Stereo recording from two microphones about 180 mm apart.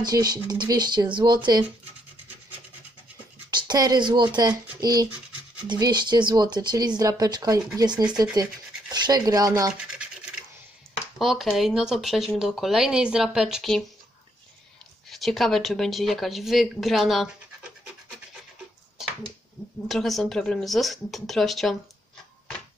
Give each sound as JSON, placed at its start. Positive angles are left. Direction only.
{"t": 0.0, "sound": "speech", "side_deg": -20}
{"t": 3.4, "sound": "speech", "side_deg": -20}
{"t": 11.1, "sound": "speech", "side_deg": 0}
{"t": 15.0, "sound": "speech", "side_deg": 0}
{"t": 19.9, "sound": "speech", "side_deg": 0}